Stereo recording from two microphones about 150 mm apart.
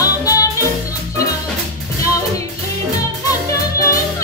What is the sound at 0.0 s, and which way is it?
Music, 25° left (ahead or behind).